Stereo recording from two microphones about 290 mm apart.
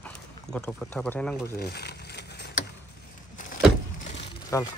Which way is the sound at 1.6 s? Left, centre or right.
Left.